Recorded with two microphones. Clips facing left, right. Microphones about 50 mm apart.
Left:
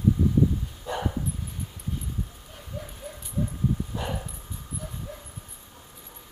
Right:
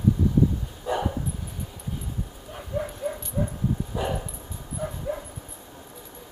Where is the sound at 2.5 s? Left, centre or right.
Right.